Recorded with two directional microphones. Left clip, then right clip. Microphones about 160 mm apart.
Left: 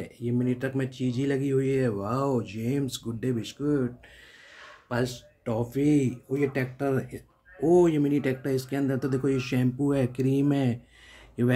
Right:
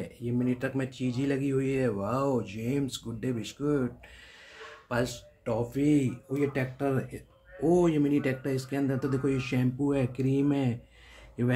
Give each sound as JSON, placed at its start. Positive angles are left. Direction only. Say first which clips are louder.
{"t": 0.0, "sound": "speech", "louder": "left 2 dB", "side_deg": 15}